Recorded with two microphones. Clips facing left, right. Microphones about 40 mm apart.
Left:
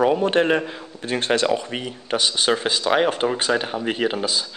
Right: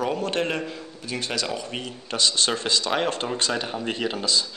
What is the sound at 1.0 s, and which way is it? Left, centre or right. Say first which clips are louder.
Speech: left 9 dB; left.